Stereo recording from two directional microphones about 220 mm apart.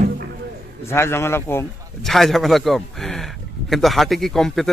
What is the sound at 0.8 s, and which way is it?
Speech, 10° left (ahead or behind).